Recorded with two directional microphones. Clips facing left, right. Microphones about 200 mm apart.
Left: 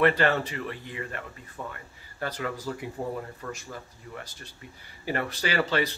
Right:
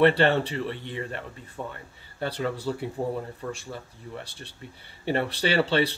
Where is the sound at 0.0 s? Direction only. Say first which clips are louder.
Right 3 dB; 30° right (ahead or behind).